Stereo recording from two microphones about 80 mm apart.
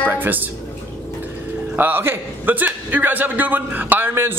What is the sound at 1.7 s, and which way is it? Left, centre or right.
A man's voice, right.